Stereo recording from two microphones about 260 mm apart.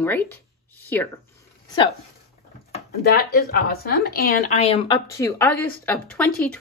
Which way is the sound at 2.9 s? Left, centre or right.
Left.